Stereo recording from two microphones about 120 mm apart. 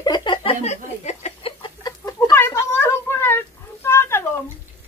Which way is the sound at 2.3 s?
20° left (ahead or behind).